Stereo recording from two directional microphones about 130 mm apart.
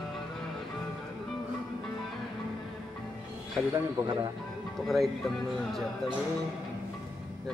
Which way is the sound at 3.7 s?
30° right (ahead or behind).